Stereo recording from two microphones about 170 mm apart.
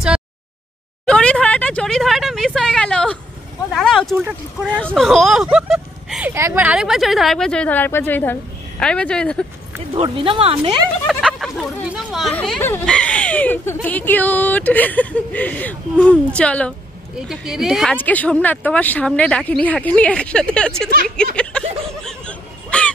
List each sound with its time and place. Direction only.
1.0 s a woman's voice: 5° left (ahead or behind)
4.2 s speech: 10° right (ahead or behind)
4.6 s a woman's voice: 5° left (ahead or behind)
6.3 s a woman's voice: 15° right (ahead or behind); by 9.5 s 5° left (ahead or behind)
9.9 s speech: 30° right (ahead or behind)
11.1 s a woman's voice: centre (ahead or behind)
17.9 s speech: 10° left (ahead or behind)
21.4 s a sound: 5° left (ahead or behind)